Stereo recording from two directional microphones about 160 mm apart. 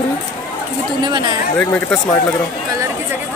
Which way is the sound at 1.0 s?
30° right (ahead or behind).